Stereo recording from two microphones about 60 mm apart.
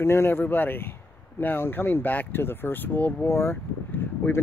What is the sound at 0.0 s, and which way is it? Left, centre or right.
Speech, left.